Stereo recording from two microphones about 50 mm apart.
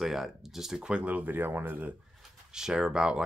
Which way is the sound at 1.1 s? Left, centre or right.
Right.